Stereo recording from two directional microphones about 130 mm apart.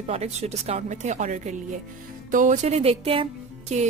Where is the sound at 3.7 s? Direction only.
60° right (ahead or behind).